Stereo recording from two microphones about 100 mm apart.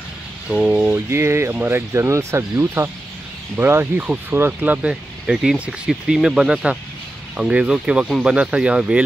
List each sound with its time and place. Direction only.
0.5 s speech: 10° right (ahead or behind)